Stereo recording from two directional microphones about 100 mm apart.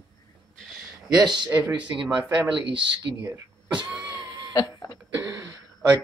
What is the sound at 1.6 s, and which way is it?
Speech, 10° right (ahead or behind).